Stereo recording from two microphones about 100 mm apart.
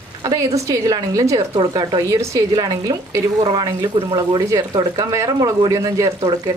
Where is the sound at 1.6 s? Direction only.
45° right (ahead or behind).